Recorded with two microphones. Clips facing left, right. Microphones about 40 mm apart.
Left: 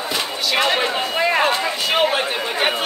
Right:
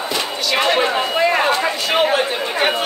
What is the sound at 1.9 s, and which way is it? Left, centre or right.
Chatter, centre.